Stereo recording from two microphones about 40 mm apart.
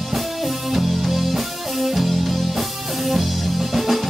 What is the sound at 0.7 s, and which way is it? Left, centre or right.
Music, centre.